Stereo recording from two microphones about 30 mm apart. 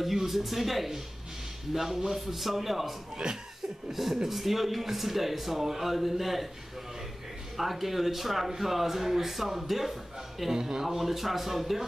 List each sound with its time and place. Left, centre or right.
0.0 s speech: centre
7.5 s speech: centre
10.5 s speech: centre
11.0 s speech: centre